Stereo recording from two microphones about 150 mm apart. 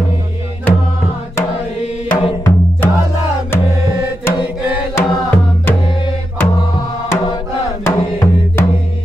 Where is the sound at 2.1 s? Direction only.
30° left (ahead or behind).